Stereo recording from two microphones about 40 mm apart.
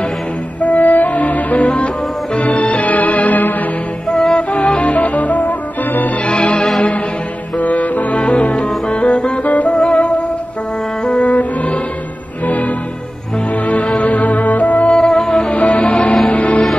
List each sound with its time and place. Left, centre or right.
0.6 s music: left
2.3 s music: left
4.1 s music: centre
4.4 s music: left
4.9 s music: left
6.2 s music: left
7.5 s music: left
9.4 s music: left
9.8 s music: left
11.3 s music: left
14.9 s music: centre
15.5 s music: left